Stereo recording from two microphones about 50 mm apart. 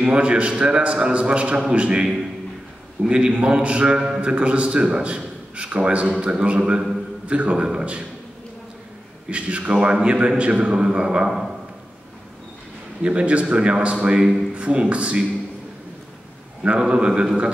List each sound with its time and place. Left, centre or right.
0.0 s a man's voice: right
3.1 s a man's voice: centre
9.3 s a man's voice: right
11.2 s a sound: centre
13.0 s a man's voice: right
14.5 s a man's voice: right
16.8 s a man's voice: centre